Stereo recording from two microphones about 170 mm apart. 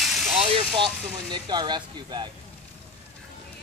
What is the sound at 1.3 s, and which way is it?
Speech, 25° right (ahead or behind).